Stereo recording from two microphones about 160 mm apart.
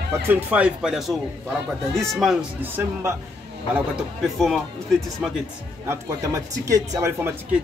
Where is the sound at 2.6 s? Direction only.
15° right (ahead or behind).